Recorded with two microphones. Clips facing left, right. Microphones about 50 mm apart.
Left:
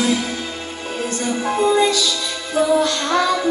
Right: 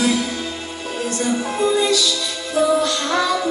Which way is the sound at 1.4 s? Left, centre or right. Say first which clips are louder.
Left 5 dB; left.